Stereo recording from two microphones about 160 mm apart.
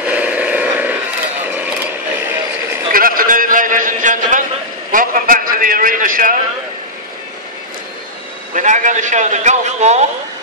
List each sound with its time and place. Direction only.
0.0 s vehicle: 10° right (ahead or behind)
1.4 s mechanisms: 10° right (ahead or behind)
2.9 s a sound: 65° right (ahead or behind)
8.5 s a man's voice: 50° right (ahead or behind)